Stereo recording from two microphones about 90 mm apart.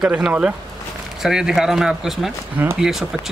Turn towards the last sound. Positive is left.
turn(degrees=-5)  # may be behind; listen again after turning